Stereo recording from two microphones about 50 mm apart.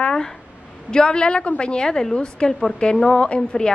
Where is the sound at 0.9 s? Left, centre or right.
Centre.